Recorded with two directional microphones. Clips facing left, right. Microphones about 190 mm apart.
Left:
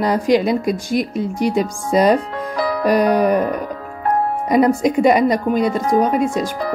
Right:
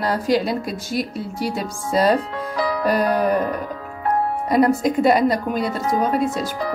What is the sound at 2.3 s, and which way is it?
Music, 50° left (ahead or behind).